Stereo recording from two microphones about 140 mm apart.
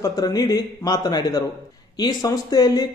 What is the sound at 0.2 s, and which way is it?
Speech, 25° left (ahead or behind).